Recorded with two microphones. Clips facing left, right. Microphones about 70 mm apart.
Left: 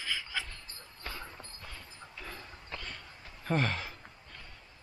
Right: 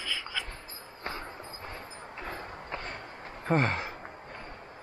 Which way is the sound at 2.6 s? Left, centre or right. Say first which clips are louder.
Right 4 dB; right.